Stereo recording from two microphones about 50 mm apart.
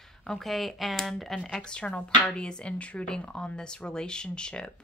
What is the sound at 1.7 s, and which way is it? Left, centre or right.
Speech, left.